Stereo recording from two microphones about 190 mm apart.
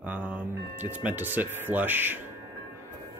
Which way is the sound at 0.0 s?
10° right (ahead or behind).